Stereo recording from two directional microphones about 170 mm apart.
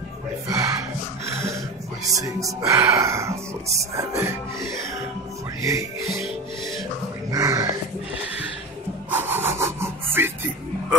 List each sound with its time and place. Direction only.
0.5 s music: 20° right (ahead or behind)
2.0 s speech: 20° right (ahead or behind)
7.2 s dog: 20° right (ahead or behind)
9.1 s sawing: 15° right (ahead or behind)